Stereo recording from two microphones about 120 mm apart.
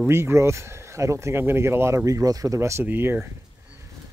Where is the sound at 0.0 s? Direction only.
20° right (ahead or behind).